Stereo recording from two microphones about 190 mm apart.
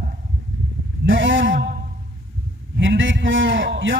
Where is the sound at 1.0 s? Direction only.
80° right.